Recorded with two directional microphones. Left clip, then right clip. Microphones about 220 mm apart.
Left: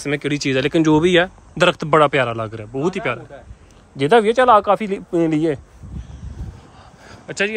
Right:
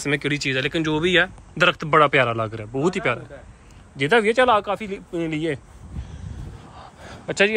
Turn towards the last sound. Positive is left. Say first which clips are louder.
# right 2 dB
turn(degrees=5)  # may be behind; listen again after turning